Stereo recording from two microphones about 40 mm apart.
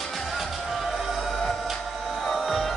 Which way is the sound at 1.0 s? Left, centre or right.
Centre.